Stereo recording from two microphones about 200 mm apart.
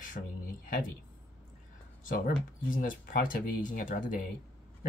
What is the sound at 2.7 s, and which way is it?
Speech, 45° left (ahead or behind).